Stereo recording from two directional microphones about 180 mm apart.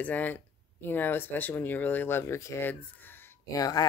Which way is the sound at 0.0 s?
10° left (ahead or behind).